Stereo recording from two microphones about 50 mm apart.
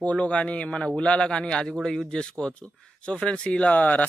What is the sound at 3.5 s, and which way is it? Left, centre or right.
Speech, left.